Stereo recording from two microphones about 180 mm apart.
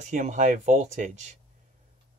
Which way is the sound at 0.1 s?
45° right (ahead or behind).